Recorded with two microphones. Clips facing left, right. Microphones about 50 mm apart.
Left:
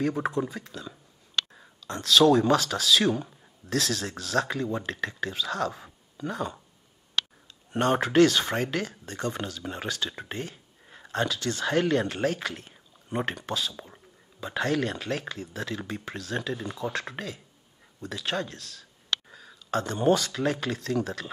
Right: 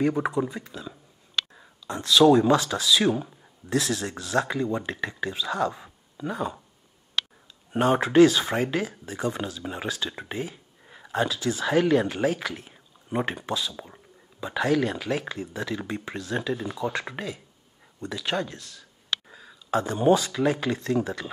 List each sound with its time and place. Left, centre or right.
0.1 s speech: centre
7.7 s speech: centre
15.0 s speech: centre